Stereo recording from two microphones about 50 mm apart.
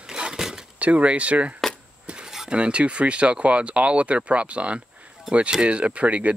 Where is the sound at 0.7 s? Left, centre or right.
Right.